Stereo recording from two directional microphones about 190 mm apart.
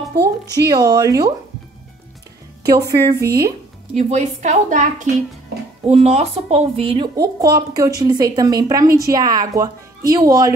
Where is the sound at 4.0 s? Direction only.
35° right (ahead or behind).